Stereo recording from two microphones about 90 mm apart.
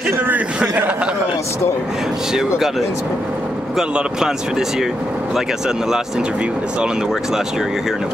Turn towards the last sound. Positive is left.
turn(degrees=-5)  # may be behind; listen again after turning